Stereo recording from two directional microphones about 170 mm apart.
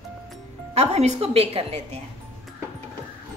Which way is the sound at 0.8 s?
40° right (ahead or behind).